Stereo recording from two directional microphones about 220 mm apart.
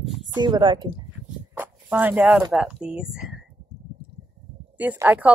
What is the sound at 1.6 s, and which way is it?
Speech, 10° right (ahead or behind).